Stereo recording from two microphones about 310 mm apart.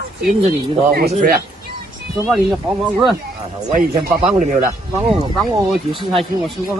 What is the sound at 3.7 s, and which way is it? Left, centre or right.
Speech, right.